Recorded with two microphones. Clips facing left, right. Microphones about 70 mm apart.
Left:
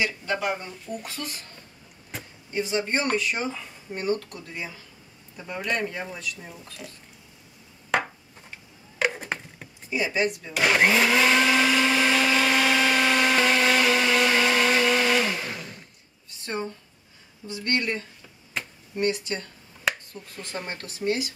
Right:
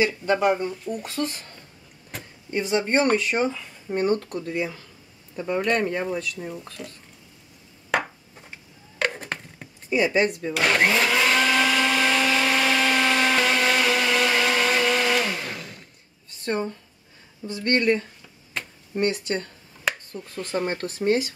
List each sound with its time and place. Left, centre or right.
0.0 s speech: right
0.9 s speech: centre
2.1 s a sound: centre
2.5 s speech: right
5.7 s speech: right
6.8 s speech: centre
7.9 s a sound: centre
9.8 s speech: right
10.5 s blender: centre
17.5 s speech: right
19.9 s finger snapping: centre
20.5 s speech: right